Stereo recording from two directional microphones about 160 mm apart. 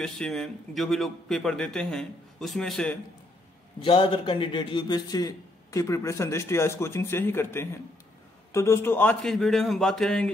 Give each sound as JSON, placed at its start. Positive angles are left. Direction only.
{"t": 0.0, "sound": "speech", "side_deg": 5}
{"t": 3.8, "sound": "a man's voice", "side_deg": 35}